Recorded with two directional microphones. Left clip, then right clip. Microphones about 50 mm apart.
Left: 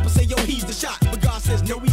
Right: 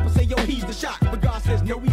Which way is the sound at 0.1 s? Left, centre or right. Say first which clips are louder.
Left 1 dB; left.